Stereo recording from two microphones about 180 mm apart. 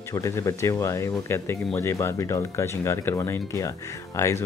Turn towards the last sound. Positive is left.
turn(degrees=15)  # may be behind; listen again after turning